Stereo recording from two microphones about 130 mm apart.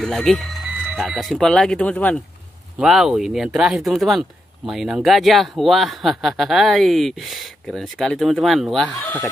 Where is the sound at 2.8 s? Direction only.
5° right (ahead or behind).